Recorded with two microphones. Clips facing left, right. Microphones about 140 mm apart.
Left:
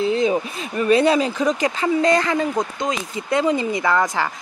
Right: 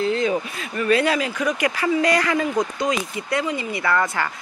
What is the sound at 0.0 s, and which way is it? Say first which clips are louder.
Speech: left 2 dB; 20° left (ahead or behind).